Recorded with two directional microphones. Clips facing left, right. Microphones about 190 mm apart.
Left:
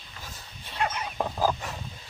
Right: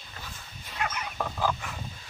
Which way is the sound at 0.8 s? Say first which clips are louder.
Left 3 dB; 30° left (ahead or behind).